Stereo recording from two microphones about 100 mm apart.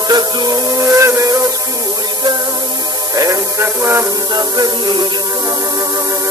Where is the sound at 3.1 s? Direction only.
35° right (ahead or behind).